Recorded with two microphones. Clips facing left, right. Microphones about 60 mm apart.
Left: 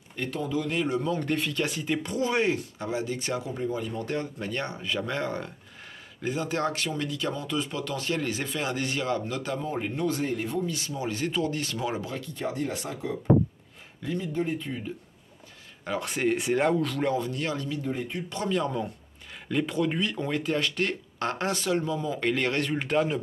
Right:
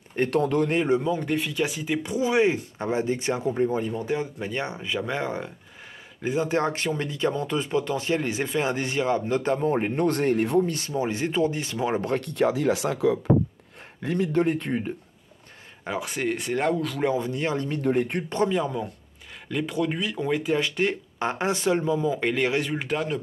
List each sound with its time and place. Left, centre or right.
0.3 s speech: right
0.7 s speech: right
1.0 s speech: centre
2.5 s speech: right
3.4 s speech: right
3.9 s speech: centre
11.9 s speech: right
14.0 s speech: right
16.0 s speech: centre
17.0 s speech: right
17.6 s speech: right
19.5 s speech: centre